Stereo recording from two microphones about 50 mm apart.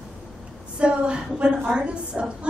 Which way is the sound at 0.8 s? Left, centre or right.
Right.